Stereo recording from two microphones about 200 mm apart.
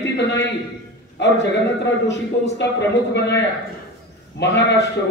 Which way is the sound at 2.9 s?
60° left (ahead or behind).